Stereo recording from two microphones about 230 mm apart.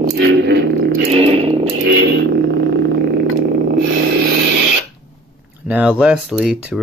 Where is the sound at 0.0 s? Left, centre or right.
Right.